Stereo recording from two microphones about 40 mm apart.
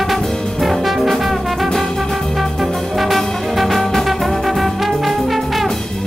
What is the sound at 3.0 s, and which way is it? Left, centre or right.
Music, centre.